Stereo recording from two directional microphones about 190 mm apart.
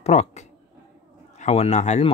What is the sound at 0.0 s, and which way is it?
Speech, 35° left (ahead or behind).